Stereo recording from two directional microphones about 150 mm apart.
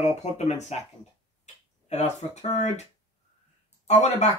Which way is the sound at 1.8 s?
50° left (ahead or behind).